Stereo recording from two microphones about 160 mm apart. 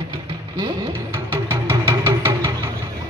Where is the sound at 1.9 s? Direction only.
15° right (ahead or behind).